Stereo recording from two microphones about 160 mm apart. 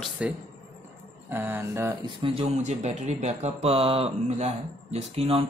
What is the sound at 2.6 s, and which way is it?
Speech, 45° right (ahead or behind).